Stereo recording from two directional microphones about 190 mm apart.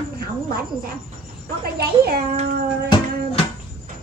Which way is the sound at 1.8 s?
55° right (ahead or behind).